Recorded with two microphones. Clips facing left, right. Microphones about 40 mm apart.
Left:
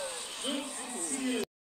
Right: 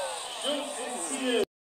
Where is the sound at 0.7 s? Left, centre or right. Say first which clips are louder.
Right 4 dB; right.